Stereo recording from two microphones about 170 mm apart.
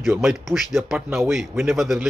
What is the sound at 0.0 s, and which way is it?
Speech, centre (ahead or behind).